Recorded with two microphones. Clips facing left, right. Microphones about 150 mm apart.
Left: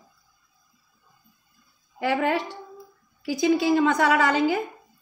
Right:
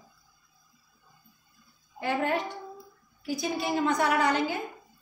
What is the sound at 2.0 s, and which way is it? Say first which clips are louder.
A woman's voice: left 4 dB; 90° left.